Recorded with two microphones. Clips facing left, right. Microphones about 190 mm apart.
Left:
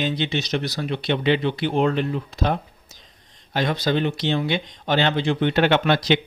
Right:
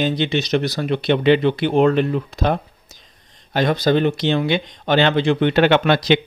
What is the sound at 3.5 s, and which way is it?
Speech, 50° right (ahead or behind).